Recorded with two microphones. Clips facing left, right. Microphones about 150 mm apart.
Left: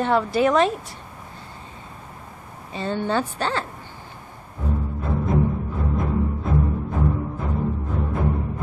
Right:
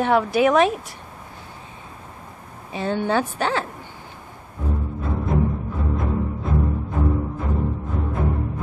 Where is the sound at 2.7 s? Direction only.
10° right (ahead or behind).